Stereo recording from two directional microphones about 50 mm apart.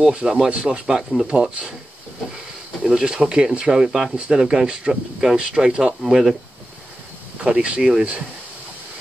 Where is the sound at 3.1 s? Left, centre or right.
Centre.